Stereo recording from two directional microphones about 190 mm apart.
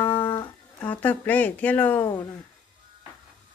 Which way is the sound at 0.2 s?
20° left (ahead or behind).